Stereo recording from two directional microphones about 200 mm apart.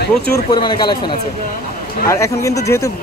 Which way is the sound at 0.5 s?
25° left (ahead or behind).